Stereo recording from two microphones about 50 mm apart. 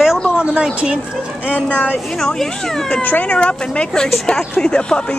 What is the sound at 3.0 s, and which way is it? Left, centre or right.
Speech, left.